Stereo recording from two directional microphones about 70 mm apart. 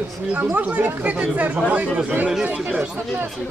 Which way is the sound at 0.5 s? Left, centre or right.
Right.